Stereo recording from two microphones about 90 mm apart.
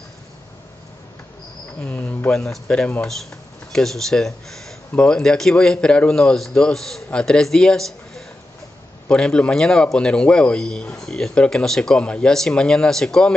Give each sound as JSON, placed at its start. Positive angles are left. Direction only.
{"t": 1.8, "sound": "speech", "side_deg": 20}